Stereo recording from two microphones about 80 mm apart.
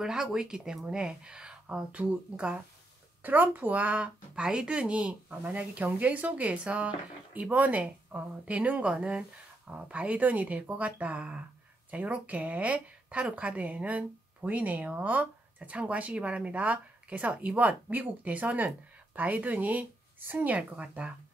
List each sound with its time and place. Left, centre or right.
0.0 s a woman's voice: centre